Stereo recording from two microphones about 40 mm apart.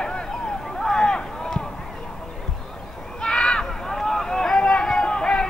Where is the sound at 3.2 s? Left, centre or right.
Left.